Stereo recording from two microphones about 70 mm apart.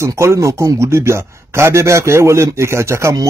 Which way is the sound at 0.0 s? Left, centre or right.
Right.